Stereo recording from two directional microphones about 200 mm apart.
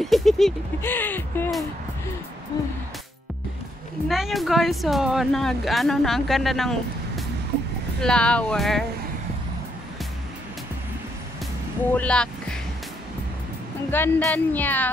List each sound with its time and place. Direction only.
0.0 s speech: centre (ahead or behind)
2.5 s music: 20° left (ahead or behind)
4.1 s speech: centre (ahead or behind)
11.9 s speech: 5° left (ahead or behind)
13.8 s speech: 10° left (ahead or behind)